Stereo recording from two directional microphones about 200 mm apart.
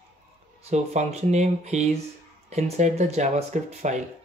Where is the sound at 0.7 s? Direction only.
35° right (ahead or behind).